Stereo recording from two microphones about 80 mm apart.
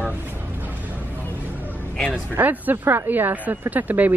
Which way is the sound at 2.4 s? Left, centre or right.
Right.